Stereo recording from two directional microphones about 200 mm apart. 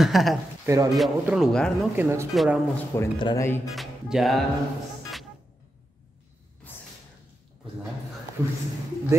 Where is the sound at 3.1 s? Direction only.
25° left (ahead or behind).